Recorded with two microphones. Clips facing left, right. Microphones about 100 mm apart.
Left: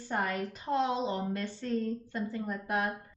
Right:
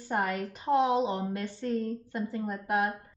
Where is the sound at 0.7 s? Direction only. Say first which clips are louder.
Right 5 dB; 15° right (ahead or behind).